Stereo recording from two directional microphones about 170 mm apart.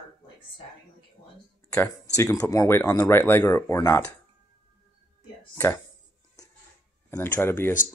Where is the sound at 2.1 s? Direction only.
20° left (ahead or behind).